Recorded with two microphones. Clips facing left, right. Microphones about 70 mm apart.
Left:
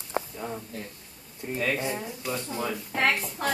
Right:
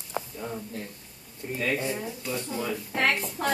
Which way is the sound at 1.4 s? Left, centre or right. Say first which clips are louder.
Even; centre.